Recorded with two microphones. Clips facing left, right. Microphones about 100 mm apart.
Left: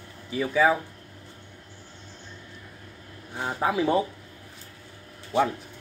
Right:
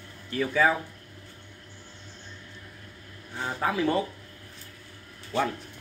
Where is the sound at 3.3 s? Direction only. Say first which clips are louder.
Left 2 dB; 15° left (ahead or behind).